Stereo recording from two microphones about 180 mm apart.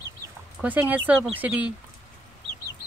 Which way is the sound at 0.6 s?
10° right (ahead or behind).